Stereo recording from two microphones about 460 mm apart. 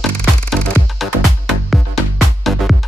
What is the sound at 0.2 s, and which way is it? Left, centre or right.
Music, centre.